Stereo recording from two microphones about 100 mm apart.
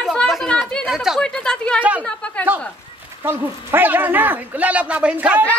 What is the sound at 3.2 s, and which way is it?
Speech, 20° right (ahead or behind).